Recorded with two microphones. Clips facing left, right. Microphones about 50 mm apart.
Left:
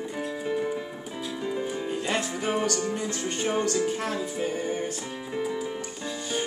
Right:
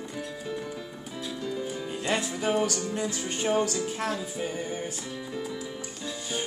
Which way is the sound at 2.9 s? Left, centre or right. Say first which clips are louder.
Left 1 dB; centre.